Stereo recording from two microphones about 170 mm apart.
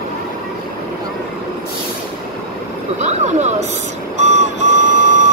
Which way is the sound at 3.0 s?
40° right (ahead or behind).